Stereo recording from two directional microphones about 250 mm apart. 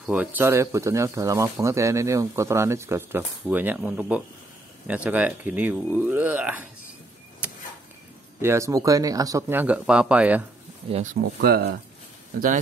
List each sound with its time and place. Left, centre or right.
0.0 s speech: centre
7.4 s a sound: centre
8.4 s speech: centre
11.4 s speech: right